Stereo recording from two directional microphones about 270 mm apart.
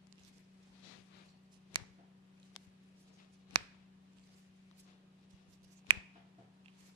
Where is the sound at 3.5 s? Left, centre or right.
Centre.